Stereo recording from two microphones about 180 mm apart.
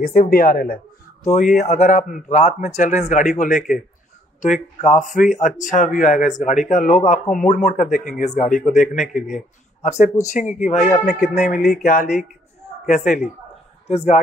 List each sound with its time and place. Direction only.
0.0 s speech: 55° left (ahead or behind)
1.2 s speech: 40° left (ahead or behind)
11.5 s speech: centre (ahead or behind)
11.8 s speech: 45° left (ahead or behind)